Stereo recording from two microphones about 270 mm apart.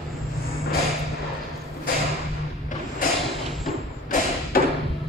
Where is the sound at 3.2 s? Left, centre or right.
Centre.